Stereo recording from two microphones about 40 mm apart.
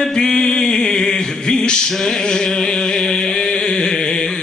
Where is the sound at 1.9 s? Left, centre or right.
Centre.